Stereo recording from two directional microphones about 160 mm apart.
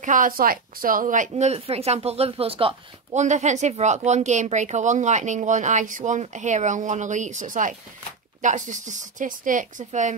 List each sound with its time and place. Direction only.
0.0 s speech: 55° right (ahead or behind)